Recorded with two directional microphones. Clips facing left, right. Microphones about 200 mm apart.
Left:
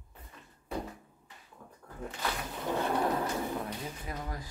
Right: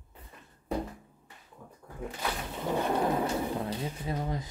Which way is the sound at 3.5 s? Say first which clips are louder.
Right 4 dB; 25° right (ahead or behind).